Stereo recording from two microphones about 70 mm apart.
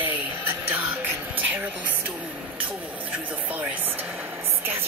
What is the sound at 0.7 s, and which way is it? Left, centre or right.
Music, right.